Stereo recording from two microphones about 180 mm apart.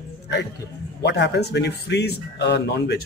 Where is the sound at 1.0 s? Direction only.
70° left (ahead or behind).